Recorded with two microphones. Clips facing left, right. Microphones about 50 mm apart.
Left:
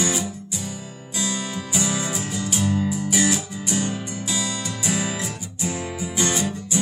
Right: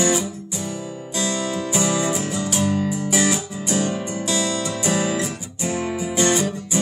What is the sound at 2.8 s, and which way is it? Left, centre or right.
Music, centre.